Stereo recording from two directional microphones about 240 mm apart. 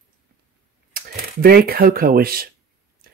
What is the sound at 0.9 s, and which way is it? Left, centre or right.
Speech, right.